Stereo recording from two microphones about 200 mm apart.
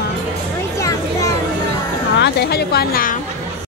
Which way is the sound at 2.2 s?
55° left (ahead or behind).